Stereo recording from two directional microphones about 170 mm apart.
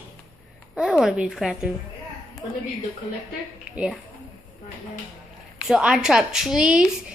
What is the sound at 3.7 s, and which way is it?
Speech, 5° right (ahead or behind).